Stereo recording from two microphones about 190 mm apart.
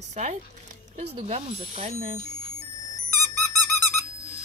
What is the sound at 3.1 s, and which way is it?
Squeak, 10° left (ahead or behind).